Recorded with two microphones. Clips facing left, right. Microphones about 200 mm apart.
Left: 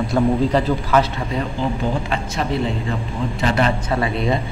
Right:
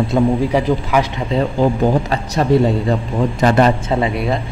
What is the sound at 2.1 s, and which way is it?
A man's voice, 40° right (ahead or behind).